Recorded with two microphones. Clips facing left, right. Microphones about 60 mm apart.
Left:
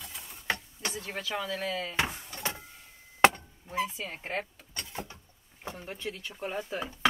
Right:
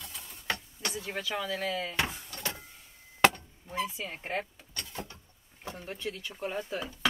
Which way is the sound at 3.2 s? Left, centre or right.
Left.